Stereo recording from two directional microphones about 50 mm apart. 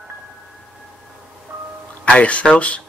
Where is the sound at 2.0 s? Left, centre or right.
Left.